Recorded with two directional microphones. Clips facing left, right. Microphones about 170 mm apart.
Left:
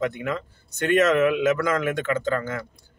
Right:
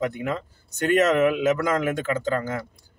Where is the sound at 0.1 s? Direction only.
35° right (ahead or behind).